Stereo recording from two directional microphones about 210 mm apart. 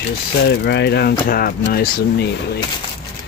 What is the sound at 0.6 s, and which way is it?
Speech, 50° left (ahead or behind).